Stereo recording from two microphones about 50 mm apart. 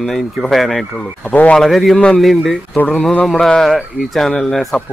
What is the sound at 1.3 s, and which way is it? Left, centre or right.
Speech, left.